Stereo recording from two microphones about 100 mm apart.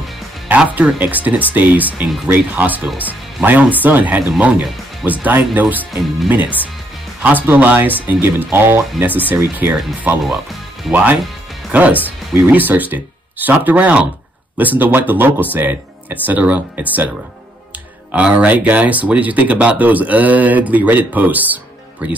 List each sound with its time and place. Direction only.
0.5 s speech: 15° right (ahead or behind)
11.7 s speech: 15° right (ahead or behind)
18.1 s speech: 15° right (ahead or behind)